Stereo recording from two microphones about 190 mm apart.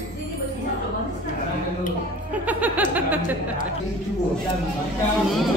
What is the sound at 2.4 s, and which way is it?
Music, 10° right (ahead or behind).